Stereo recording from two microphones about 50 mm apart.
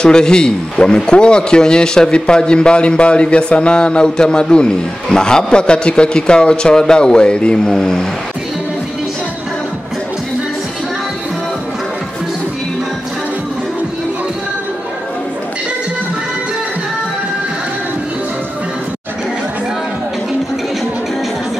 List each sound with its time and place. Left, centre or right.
0.0 s a man's voice: centre